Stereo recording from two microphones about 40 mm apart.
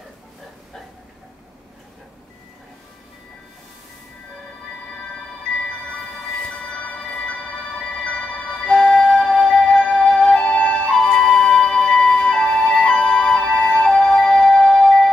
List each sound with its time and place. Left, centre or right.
8.0 s flute: left
9.9 s music: left
10.9 s music: centre